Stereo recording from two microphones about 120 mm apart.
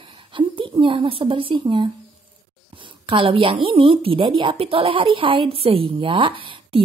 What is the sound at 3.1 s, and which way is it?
A woman's voice, 45° right (ahead or behind).